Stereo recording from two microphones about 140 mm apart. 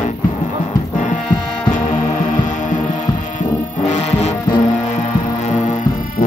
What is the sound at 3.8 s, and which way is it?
Music, 55° left (ahead or behind).